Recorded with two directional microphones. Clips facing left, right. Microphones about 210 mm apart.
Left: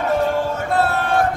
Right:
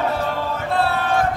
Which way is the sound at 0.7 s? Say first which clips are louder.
Left 1 dB; 50° left (ahead or behind).